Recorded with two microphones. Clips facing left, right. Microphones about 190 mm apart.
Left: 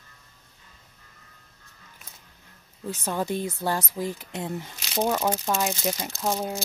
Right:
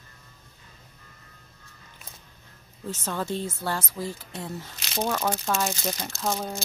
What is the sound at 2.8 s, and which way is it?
Speech, 15° left (ahead or behind).